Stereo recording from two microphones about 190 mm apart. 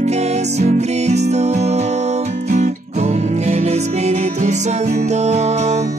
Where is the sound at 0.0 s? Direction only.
35° right (ahead or behind).